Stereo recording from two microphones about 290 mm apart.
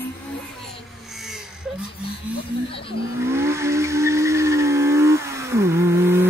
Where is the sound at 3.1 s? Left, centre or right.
Centre.